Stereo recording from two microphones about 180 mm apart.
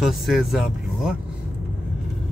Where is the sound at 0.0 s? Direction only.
Centre (ahead or behind).